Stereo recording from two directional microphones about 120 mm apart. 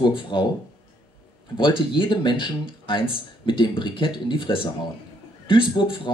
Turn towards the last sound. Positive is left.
turn(degrees=40)  # may be behind; listen again after turning